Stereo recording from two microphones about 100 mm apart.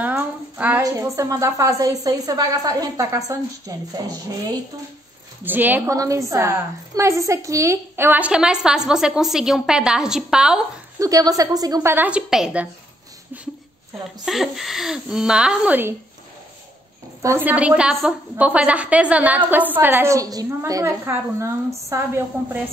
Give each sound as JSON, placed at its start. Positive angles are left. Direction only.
{"t": 0.6, "sound": "a woman's voice", "side_deg": -15}
{"t": 0.8, "sound": "a woman's voice", "side_deg": -35}
{"t": 5.4, "sound": "a woman's voice", "side_deg": -20}
{"t": 5.9, "sound": "a woman's voice", "side_deg": -35}
{"t": 8.3, "sound": "a woman's voice", "side_deg": -5}
{"t": 11.0, "sound": "a woman's voice", "side_deg": -35}
{"t": 11.8, "sound": "a woman's voice", "side_deg": -20}
{"t": 12.1, "sound": "a woman's voice", "side_deg": -5}
{"t": 14.2, "sound": "a woman's voice", "side_deg": 0}
{"t": 17.2, "sound": "a woman's voice", "side_deg": -30}
{"t": 17.5, "sound": "a woman's voice", "side_deg": -10}
{"t": 20.2, "sound": "a woman's voice", "side_deg": -35}
{"t": 20.8, "sound": "a woman's voice", "side_deg": -25}